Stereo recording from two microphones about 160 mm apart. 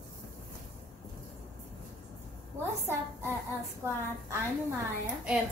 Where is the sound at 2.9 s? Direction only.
15° right (ahead or behind).